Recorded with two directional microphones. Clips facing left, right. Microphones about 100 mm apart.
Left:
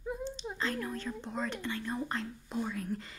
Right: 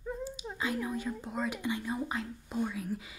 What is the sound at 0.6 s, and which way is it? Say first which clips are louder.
A woman's voice: right 3 dB; 10° right (ahead or behind).